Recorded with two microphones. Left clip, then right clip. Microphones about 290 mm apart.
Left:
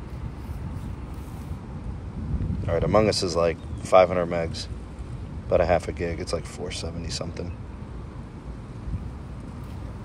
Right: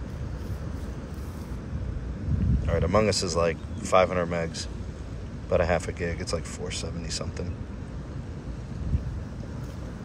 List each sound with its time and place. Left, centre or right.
2.6 s speech: centre
5.5 s speech: centre